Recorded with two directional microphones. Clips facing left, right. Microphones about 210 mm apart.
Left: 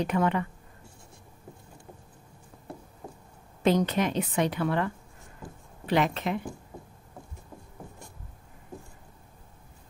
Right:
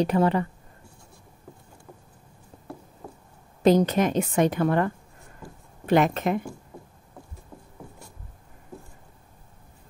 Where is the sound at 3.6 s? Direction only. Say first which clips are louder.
Right 5 dB; 40° right (ahead or behind).